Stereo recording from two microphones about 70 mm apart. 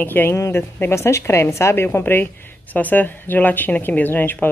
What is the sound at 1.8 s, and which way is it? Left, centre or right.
Speech, left.